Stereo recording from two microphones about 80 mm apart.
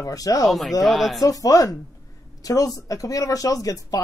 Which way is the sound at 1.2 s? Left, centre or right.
Left.